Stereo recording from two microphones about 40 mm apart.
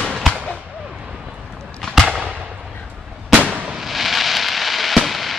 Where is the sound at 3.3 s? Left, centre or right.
Right.